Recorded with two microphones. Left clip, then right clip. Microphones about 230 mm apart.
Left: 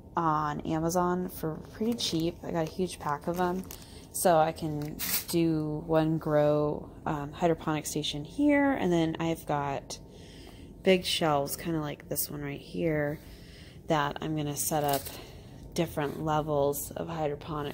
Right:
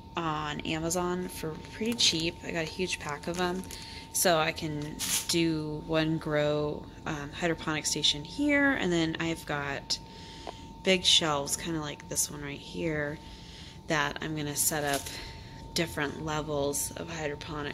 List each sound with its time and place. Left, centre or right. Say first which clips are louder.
0.1 s a woman's voice: left 4 dB; centre
0.7 s speech: left 4 dB; centre
2.0 s speech: right 4 dB; centre